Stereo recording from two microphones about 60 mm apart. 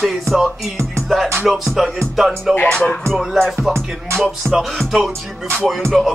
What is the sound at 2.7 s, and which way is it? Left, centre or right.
Music, centre.